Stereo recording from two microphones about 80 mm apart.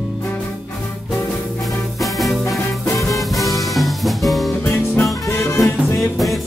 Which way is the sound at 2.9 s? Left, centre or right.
Left.